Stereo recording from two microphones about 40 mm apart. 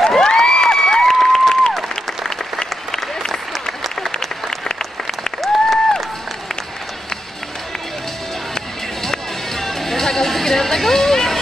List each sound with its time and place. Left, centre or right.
0.0 s cheering: centre
2.9 s applause: centre
4.5 s applause: centre
5.4 s applause: centre
9.0 s music: centre